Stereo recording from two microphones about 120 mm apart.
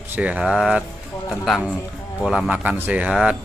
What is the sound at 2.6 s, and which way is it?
Speech, 15° right (ahead or behind).